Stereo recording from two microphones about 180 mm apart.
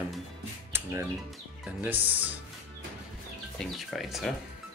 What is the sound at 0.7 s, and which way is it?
Music, 15° right (ahead or behind).